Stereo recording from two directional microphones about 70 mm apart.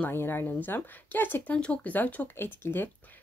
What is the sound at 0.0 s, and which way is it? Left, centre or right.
A woman's voice, left.